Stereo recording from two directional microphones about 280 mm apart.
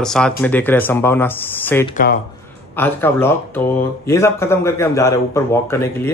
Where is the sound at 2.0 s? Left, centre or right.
Left.